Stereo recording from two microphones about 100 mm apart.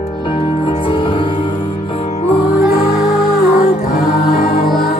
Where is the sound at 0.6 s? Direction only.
55° left (ahead or behind).